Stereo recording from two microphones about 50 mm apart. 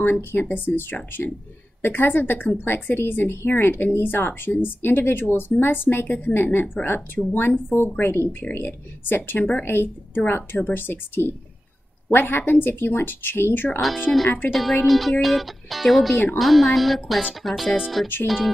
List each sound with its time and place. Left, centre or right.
0.0 s a woman's voice: left
14.1 s speech: left
14.5 s speech: centre